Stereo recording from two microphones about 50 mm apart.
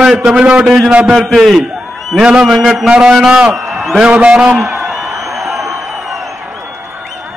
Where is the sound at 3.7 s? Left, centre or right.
Centre.